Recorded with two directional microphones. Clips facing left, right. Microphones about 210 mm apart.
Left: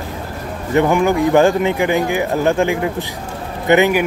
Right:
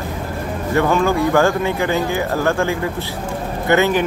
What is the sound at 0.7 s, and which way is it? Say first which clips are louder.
Speech: left 2 dB; 20° left (ahead or behind).